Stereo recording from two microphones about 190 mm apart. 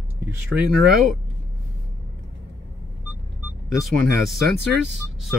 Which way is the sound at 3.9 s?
Centre (ahead or behind).